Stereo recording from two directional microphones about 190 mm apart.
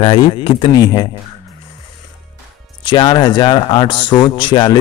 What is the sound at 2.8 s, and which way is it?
A man's voice, 25° left (ahead or behind).